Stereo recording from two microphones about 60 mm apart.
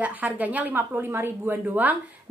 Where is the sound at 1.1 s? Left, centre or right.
Right.